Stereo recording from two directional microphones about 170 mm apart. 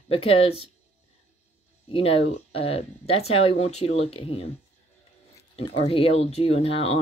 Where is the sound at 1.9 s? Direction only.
35° left (ahead or behind).